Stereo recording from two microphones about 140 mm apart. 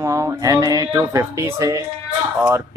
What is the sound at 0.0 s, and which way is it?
Speech, 20° right (ahead or behind).